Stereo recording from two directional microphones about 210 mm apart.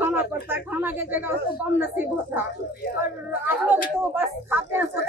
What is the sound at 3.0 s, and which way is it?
Speech, 10° right (ahead or behind).